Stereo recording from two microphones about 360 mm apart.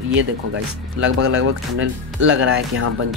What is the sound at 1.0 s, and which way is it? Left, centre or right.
Speech, right.